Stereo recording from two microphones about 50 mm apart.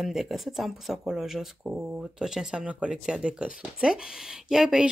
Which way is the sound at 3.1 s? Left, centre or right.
Centre.